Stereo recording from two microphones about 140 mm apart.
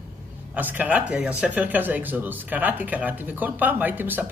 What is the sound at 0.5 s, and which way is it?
Speech, 10° right (ahead or behind).